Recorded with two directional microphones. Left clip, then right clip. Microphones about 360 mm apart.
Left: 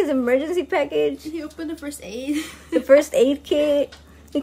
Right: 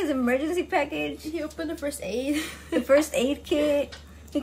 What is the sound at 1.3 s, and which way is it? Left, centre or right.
A woman's voice, centre.